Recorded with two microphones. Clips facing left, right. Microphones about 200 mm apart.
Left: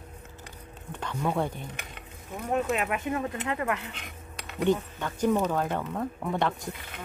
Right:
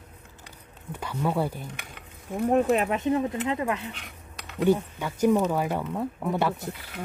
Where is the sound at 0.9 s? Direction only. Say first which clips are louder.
Right 2 dB; 5° right (ahead or behind).